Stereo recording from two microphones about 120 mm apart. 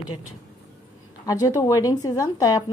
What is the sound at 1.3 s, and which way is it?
Speech, 30° left (ahead or behind).